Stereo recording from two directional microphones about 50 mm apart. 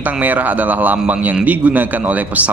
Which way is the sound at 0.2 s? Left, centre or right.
Right.